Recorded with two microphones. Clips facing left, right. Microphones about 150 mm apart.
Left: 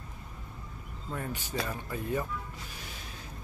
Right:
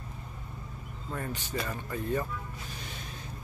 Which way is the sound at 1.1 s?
10° left (ahead or behind).